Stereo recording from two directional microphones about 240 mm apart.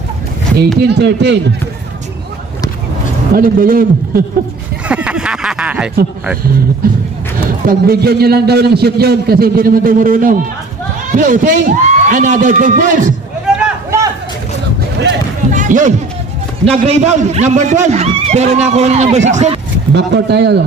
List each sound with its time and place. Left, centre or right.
0.7 s speech: right
3.3 s a man's voice: right
4.8 s a sound: centre
7.6 s a man's voice: right
13.5 s a sound: centre
15.5 s music: right
16.6 s a man's voice: right
20.1 s speech: right